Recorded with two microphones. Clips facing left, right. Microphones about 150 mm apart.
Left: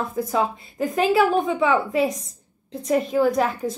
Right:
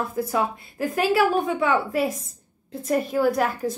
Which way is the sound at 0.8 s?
5° right (ahead or behind).